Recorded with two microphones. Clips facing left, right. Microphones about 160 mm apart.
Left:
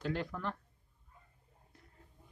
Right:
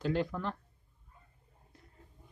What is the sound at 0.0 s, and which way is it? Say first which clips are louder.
Speech: right 5 dB; 25° right (ahead or behind).